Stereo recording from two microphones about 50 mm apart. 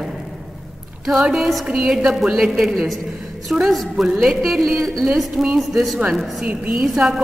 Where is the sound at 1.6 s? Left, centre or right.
Centre.